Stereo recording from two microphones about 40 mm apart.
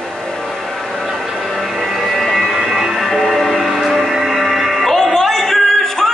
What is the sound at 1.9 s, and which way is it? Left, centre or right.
Music, centre.